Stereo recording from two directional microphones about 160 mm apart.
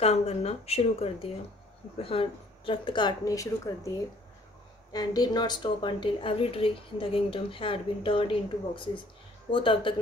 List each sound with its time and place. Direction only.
0.0 s speech: 40° left (ahead or behind); by 3.9 s 20° left (ahead or behind)
4.9 s speech: 25° left (ahead or behind)